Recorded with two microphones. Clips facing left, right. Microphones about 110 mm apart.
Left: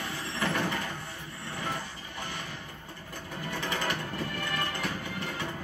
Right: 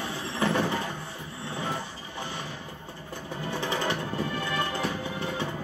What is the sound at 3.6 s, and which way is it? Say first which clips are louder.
Music: right 3 dB; 20° right (ahead or behind).